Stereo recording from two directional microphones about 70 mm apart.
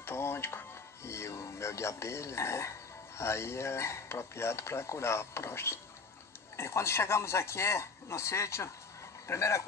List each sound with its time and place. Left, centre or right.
0.0 s music: left
3.2 s speech: left